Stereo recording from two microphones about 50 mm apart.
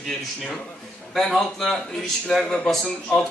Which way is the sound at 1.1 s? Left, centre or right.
Centre.